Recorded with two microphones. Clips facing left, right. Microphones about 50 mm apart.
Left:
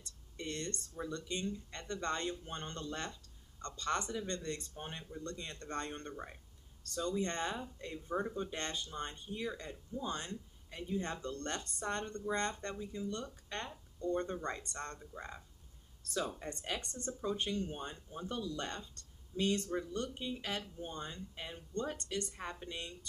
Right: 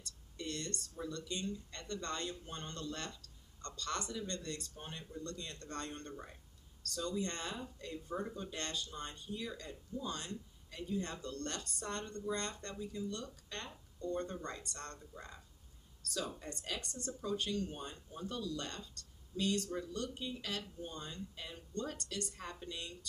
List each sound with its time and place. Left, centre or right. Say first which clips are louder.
0.0 s speech: even; left
16.0 s a sound: left 3 dB; left
16.3 s speech: left 3 dB; left